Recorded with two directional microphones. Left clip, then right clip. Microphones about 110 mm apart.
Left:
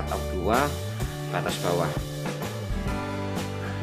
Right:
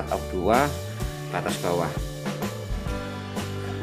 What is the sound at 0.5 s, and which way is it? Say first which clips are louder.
Speech: right 3 dB; 15° right (ahead or behind).